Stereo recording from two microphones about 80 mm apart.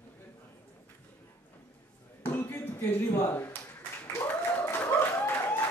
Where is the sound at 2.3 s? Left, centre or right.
Left.